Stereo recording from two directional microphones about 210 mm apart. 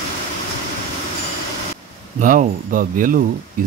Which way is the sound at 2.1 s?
40° right (ahead or behind).